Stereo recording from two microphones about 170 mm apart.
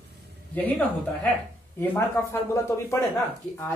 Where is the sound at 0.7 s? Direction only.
10° left (ahead or behind).